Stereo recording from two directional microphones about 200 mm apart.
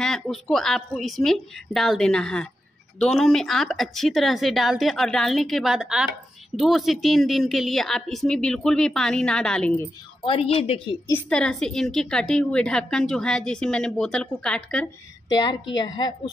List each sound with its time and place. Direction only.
0.0 s a woman's voice: centre (ahead or behind)
10.2 s a woman's voice: 30° left (ahead or behind)
11.1 s a woman's voice: 5° left (ahead or behind)
15.3 s a woman's voice: 20° left (ahead or behind)